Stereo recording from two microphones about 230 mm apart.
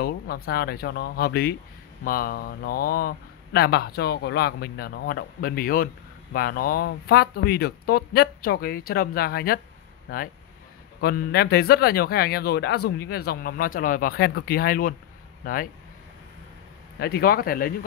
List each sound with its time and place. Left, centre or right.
0.0 s speech: left
17.0 s speech: left